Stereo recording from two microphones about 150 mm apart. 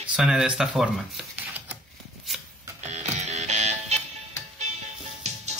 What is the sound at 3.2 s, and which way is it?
Music, 50° right (ahead or behind).